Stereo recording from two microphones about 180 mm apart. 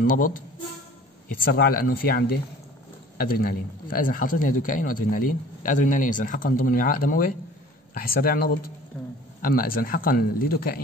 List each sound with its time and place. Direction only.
0.0 s a man's voice: 50° left (ahead or behind)
8.9 s a man's voice: 10° left (ahead or behind)
9.4 s a man's voice: 55° left (ahead or behind)